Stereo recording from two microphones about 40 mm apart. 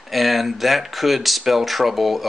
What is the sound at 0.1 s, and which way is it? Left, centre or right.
Speech, centre.